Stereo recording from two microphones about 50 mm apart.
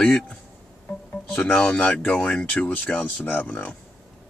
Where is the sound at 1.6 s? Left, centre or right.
Left.